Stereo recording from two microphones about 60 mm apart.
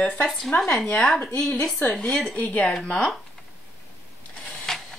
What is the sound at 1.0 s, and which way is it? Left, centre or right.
Speech, centre.